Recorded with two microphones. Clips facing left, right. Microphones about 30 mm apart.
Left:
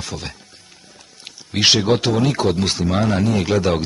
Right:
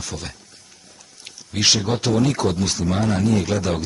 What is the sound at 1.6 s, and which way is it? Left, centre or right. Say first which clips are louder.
Speech: left 4 dB; left.